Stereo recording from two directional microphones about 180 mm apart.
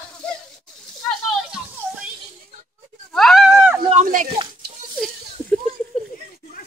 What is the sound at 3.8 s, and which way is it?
Speech, 40° right (ahead or behind).